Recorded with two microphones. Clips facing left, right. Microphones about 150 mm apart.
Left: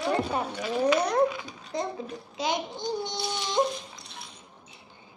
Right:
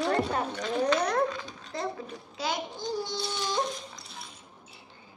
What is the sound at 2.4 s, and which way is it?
A child's voice, 20° left (ahead or behind).